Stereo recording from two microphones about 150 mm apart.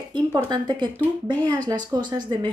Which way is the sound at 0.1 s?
30° right (ahead or behind).